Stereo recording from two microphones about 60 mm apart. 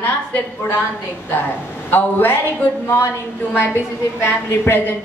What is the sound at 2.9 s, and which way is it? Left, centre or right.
Speech, left.